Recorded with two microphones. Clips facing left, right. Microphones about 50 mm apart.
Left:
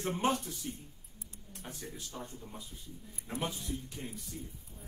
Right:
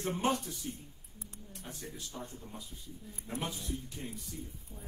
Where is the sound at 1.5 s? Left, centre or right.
Left.